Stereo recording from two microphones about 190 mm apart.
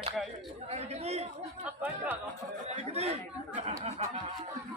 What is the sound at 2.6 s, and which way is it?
Music, 35° right (ahead or behind).